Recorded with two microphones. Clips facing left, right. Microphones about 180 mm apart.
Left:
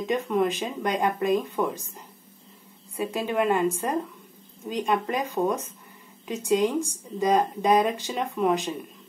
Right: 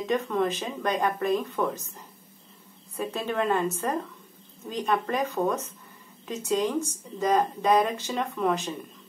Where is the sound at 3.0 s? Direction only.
10° left (ahead or behind).